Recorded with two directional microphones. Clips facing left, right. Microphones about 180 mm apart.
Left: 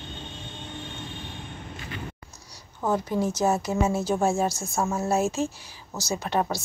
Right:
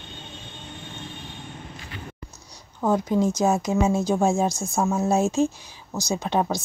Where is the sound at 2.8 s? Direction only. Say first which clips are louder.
Right 4 dB; 15° right (ahead or behind).